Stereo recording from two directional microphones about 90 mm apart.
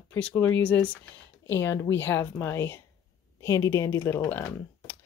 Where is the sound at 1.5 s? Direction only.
25° left (ahead or behind).